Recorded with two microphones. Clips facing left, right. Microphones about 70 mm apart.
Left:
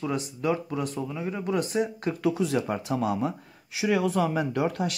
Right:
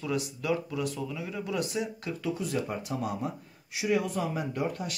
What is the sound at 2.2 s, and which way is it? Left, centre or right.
Speech, left.